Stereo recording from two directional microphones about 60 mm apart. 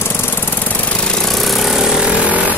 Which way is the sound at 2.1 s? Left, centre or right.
Right.